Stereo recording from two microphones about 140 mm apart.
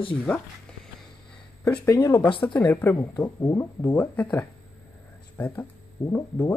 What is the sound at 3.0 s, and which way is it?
Speech, 30° left (ahead or behind).